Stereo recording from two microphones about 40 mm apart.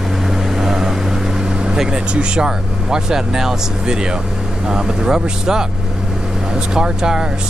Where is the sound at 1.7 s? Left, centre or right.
Centre.